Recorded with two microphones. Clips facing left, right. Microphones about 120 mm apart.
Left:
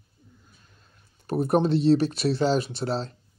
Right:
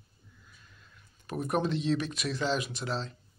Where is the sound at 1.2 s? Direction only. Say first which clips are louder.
Left 8 dB; 35° left (ahead or behind).